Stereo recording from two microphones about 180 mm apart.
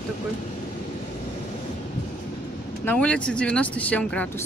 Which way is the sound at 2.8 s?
5° left (ahead or behind).